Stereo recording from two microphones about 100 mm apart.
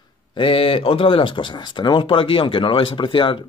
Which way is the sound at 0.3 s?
60° left (ahead or behind).